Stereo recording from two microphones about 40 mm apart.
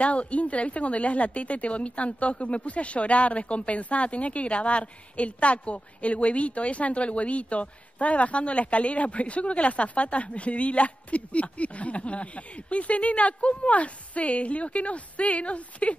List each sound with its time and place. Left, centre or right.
0.0 s speech: left